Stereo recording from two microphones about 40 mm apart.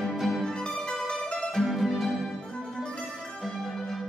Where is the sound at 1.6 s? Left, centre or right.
Centre.